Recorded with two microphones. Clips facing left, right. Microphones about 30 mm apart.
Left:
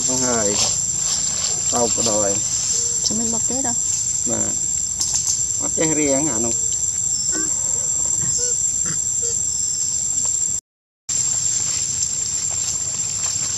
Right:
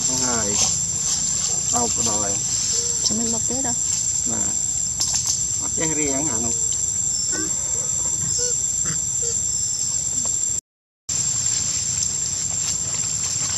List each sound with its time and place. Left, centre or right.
0.0 s a sound: centre
0.5 s a sound: left
1.8 s speech: left
2.5 s music: centre
3.0 s music: centre
3.3 s speech: centre
4.9 s bird flight: centre
5.6 s speech: left
8.8 s a sound: centre